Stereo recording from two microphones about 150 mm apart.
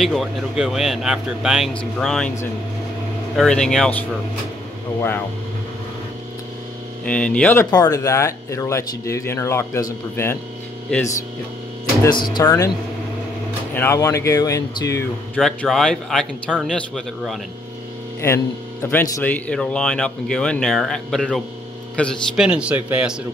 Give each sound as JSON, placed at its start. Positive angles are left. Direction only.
{"t": 0.0, "sound": "speech", "side_deg": 0}
{"t": 3.3, "sound": "speech", "side_deg": 5}
{"t": 7.1, "sound": "speech", "side_deg": 5}
{"t": 7.7, "sound": "speech", "side_deg": 25}
{"t": 12.0, "sound": "speech", "side_deg": 30}
{"t": 13.7, "sound": "speech", "side_deg": 20}
{"t": 15.3, "sound": "speech", "side_deg": 0}
{"t": 18.2, "sound": "speech", "side_deg": 15}
{"t": 22.4, "sound": "speech", "side_deg": -5}